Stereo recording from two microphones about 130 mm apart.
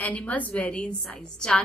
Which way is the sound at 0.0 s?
10° left (ahead or behind).